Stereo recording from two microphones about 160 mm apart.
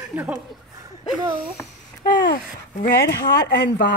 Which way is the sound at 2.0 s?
70° left (ahead or behind).